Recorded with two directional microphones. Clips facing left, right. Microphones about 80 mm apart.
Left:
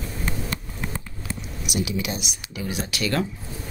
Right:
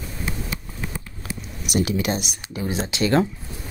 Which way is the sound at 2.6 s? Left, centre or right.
Right.